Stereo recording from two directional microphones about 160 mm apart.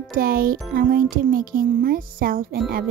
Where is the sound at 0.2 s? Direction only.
65° right (ahead or behind).